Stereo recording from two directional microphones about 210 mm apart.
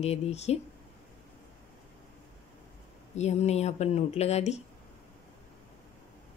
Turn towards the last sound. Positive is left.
turn(degrees=30)  # may be behind; listen again after turning